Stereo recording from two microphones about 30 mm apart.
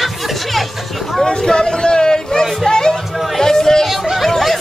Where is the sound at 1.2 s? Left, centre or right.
Left.